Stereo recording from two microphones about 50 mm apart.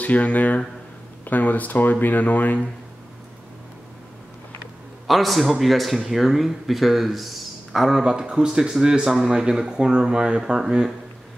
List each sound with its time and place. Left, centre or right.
0.0 s speech: left
5.0 s a man's voice: centre
8.0 s speech: centre